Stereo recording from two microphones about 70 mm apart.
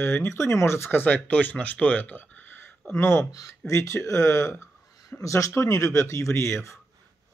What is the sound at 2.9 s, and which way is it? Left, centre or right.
Speech, left.